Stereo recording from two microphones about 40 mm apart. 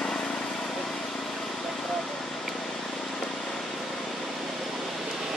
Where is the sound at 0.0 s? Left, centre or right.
Centre.